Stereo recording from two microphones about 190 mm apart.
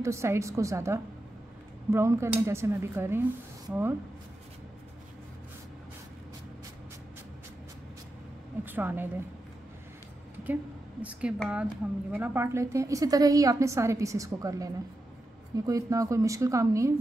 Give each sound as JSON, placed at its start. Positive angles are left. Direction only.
{"t": 0.0, "sound": "a woman's voice", "side_deg": -15}
{"t": 8.6, "sound": "a woman's voice", "side_deg": -10}
{"t": 10.4, "sound": "a woman's voice", "side_deg": -10}